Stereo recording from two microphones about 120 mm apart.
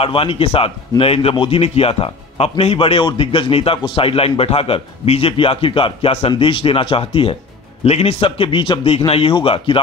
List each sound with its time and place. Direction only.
0.0 s speech: 50° left (ahead or behind)